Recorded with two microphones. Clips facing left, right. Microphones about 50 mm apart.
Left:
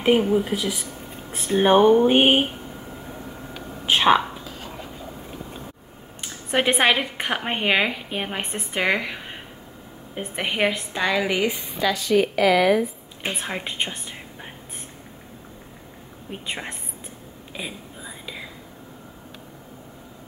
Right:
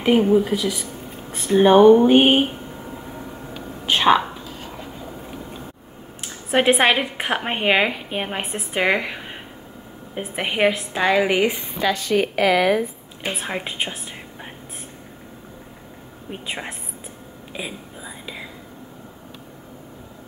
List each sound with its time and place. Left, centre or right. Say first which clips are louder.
0.5 s a woman's voice: right 3 dB; centre
3.8 s speech: right 1 dB; centre
6.2 s a woman's voice: right 4 dB; centre
10.9 s a woman's voice: right 4 dB; centre
11.4 s a woman's voice: right 2 dB; right
13.3 s a woman's voice: right 3 dB; centre
16.3 s a woman's voice: right 1 dB; centre
17.6 s whispering: right 2 dB; centre